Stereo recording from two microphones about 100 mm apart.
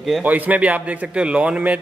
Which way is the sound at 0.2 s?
15° right (ahead or behind).